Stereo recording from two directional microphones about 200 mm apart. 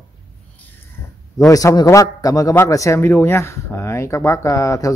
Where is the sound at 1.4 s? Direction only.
15° left (ahead or behind).